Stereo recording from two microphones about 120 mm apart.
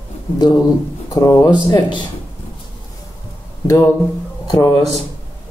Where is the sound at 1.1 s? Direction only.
30° left (ahead or behind).